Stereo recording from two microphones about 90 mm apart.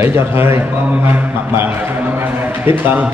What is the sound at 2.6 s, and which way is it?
Speech, 25° right (ahead or behind).